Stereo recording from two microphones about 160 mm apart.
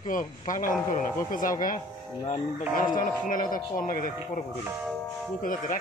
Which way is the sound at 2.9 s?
60° left (ahead or behind).